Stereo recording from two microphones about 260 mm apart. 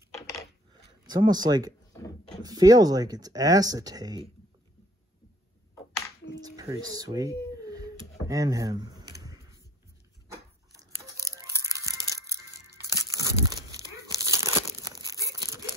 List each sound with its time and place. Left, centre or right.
1.0 s speech: centre
6.2 s a sound: centre
10.7 s tearing: centre
11.9 s music: centre
12.9 s crumpling: centre